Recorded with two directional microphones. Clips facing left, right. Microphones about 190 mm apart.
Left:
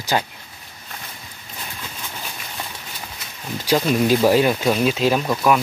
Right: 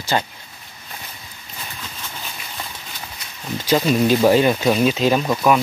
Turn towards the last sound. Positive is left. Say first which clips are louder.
# right 1 dB
turn(degrees=0)  # may be behind; listen again after turning